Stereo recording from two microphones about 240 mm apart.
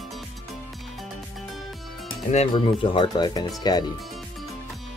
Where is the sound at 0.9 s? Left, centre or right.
Centre.